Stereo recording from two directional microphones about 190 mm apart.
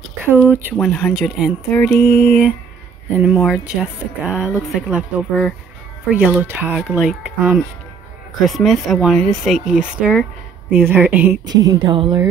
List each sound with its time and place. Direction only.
0.5 s speech: 10° right (ahead or behind)
0.7 s speech: 5° left (ahead or behind)
3.2 s speech: 5° right (ahead or behind)
11.4 s speech: 20° right (ahead or behind)